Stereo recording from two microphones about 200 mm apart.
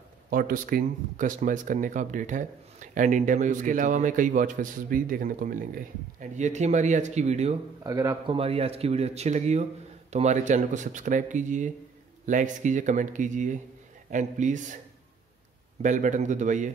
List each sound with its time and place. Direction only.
0.3 s speech: 45° right (ahead or behind)
7.8 s a man's voice: 15° right (ahead or behind)
8.4 s speech: 30° right (ahead or behind)
15.8 s speech: 40° right (ahead or behind)